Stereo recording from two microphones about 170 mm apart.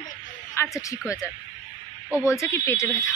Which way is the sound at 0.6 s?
15° left (ahead or behind).